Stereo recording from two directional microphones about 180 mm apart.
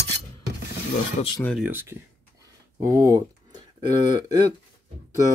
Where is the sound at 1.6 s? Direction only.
10° right (ahead or behind).